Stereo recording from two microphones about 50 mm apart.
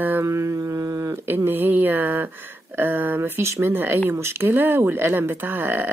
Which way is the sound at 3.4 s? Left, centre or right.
Right.